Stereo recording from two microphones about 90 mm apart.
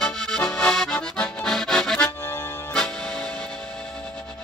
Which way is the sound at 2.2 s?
30° left (ahead or behind).